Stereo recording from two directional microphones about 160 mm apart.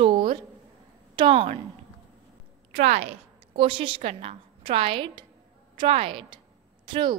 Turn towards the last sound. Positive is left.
turn(degrees=-30)  # may be behind; listen again after turning